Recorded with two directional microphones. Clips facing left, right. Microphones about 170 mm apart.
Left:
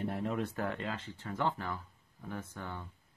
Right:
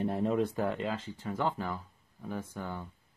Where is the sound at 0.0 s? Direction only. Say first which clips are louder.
Right 6 dB; 20° right (ahead or behind).